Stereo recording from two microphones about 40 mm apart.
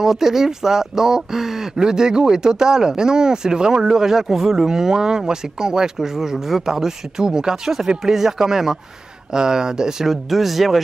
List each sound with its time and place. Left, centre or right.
0.0 s speech: centre